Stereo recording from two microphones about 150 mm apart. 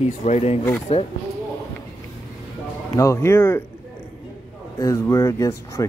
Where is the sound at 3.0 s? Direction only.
20° left (ahead or behind).